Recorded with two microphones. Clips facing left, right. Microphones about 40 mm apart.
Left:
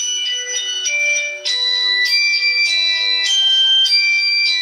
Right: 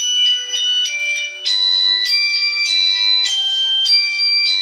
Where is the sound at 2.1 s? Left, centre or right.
Left.